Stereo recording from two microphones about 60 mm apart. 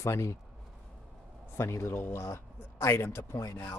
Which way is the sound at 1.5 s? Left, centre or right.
Left.